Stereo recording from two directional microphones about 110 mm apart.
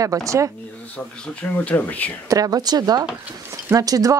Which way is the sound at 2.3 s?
35° right (ahead or behind).